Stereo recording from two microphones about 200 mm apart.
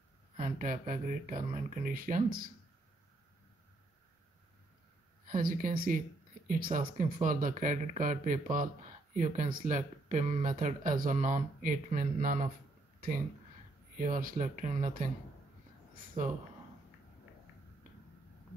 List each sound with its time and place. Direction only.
0.4 s speech: 40° right (ahead or behind)
5.2 s speech: 45° right (ahead or behind)
13.9 s speech: 40° right (ahead or behind)